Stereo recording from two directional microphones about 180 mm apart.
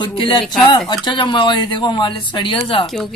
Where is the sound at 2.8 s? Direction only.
Centre (ahead or behind).